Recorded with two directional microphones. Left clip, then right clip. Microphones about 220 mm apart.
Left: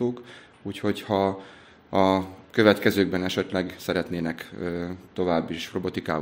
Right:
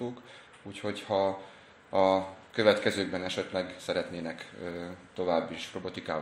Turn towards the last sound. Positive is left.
turn(degrees=50)  # may be behind; listen again after turning